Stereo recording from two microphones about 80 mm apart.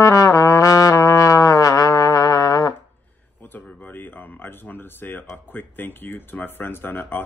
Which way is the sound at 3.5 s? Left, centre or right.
Left.